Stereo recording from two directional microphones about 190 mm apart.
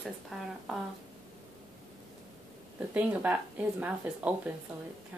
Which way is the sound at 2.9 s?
10° right (ahead or behind).